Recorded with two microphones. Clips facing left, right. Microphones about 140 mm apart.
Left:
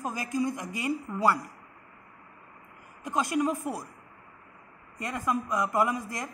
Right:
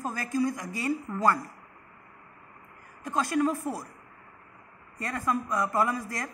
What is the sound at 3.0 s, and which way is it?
Speech, 15° left (ahead or behind).